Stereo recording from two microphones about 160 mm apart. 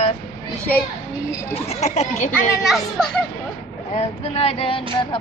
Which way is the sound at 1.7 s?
45° left (ahead or behind).